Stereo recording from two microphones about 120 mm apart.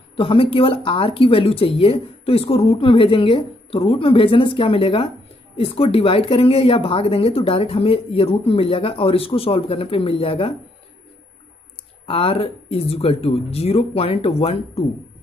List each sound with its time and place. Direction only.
0.1 s speech: 50° left (ahead or behind)
12.1 s speech: 50° left (ahead or behind)